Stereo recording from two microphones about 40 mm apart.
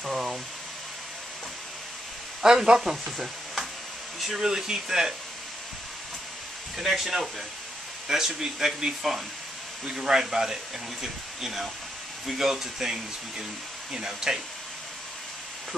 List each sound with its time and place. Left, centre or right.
0.0 s speech: centre
2.4 s speech: centre
2.9 s speech: centre
6.8 s speech: centre